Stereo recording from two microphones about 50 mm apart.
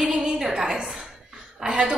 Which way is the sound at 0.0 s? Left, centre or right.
Centre.